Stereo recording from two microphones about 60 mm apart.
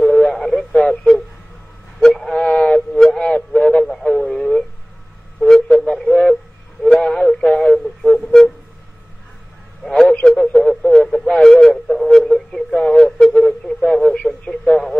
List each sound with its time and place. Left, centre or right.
0.0 s radio: centre
2.0 s a sound: centre
3.9 s radio: centre
5.4 s a sound: centre
9.8 s radio: centre
14.5 s radio: centre